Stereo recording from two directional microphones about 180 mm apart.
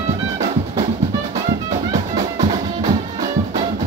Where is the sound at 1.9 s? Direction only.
25° right (ahead or behind).